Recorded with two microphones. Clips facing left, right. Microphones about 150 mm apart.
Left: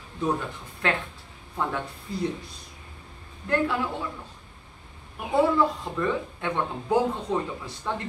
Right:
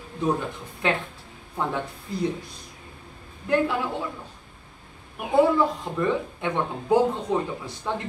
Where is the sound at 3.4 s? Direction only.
15° right (ahead or behind).